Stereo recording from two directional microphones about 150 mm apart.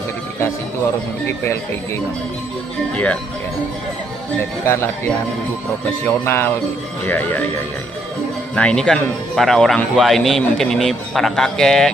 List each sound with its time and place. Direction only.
2.9 s speech: 10° left (ahead or behind)
4.4 s speech: 15° left (ahead or behind)
6.0 s speech: 15° left (ahead or behind)
8.5 s a man's voice: 5° left (ahead or behind)